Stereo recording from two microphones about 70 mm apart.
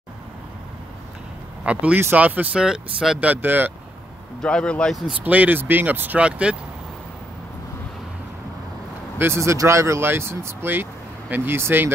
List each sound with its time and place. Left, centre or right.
1.6 s speech: centre
2.5 s speech: centre
3.3 s speech: right
4.4 s speech: centre
5.2 s speech: right
9.2 s speech: right